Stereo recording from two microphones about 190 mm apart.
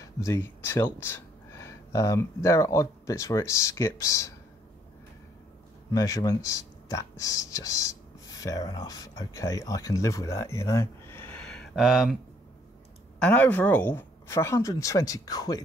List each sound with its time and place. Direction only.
0.0 s speech: 15° left (ahead or behind)
5.9 s speech: 15° left (ahead or behind); by 12.2 s 5° right (ahead or behind)
13.2 s speech: 10° left (ahead or behind)